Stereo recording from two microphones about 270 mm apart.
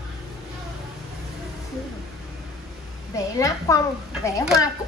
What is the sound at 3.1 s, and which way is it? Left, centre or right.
A child's voice, centre.